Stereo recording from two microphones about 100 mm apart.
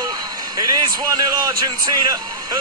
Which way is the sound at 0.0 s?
40° right (ahead or behind).